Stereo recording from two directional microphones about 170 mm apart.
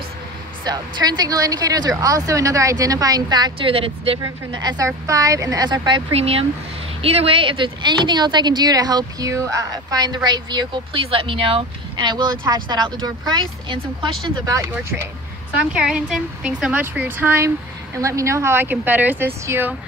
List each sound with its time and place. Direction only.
0.7 s speech: 25° right (ahead or behind)
15.7 s speech: 5° right (ahead or behind)